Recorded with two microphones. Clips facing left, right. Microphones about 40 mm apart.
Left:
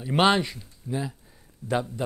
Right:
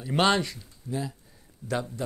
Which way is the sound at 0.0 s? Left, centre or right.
Centre.